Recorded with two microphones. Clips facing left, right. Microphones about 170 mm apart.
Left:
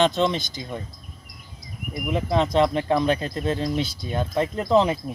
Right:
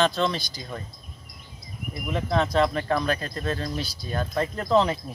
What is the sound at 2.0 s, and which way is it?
Speech, 15° left (ahead or behind).